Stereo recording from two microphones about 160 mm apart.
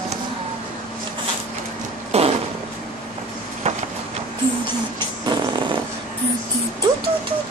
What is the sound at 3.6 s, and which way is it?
Vehicle, 45° right (ahead or behind).